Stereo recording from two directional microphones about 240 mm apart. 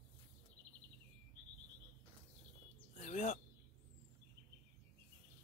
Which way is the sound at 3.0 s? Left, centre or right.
Left.